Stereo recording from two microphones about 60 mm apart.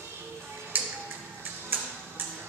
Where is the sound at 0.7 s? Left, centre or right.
Right.